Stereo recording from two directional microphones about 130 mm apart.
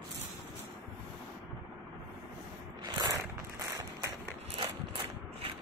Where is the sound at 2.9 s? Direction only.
35° right (ahead or behind).